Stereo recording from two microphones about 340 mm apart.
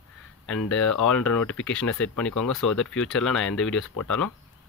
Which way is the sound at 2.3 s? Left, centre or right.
Left.